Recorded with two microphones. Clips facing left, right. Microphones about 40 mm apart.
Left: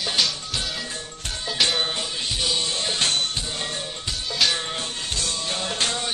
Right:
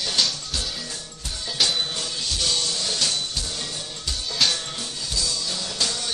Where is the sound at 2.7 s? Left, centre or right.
Left.